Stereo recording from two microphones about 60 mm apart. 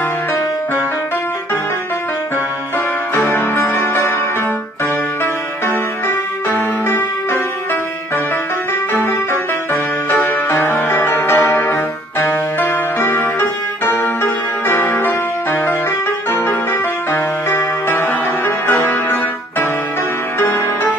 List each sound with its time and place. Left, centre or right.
3.2 s music: left
5.2 s music: left
8.9 s music: left
17.8 s music: left
20.3 s music: left